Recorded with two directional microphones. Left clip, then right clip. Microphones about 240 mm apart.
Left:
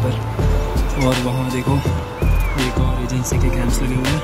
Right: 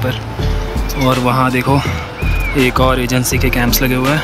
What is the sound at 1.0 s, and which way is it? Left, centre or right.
Speech, centre.